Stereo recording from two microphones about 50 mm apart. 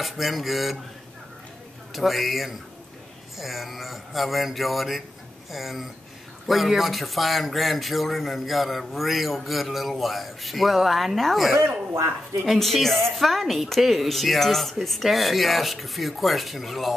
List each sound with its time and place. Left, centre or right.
0.0 s a man's voice: centre
2.0 s a man's voice: centre
11.6 s speech: right
12.4 s a man's voice: centre